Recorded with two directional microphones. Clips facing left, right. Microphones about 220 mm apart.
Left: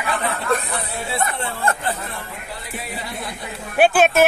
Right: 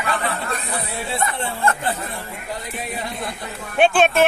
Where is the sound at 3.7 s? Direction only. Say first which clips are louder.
Left 1 dB; 5° left (ahead or behind).